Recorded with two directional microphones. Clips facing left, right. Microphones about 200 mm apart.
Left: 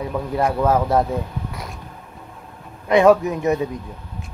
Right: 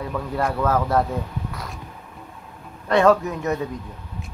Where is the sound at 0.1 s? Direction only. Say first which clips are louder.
Left 4 dB; 15° left (ahead or behind).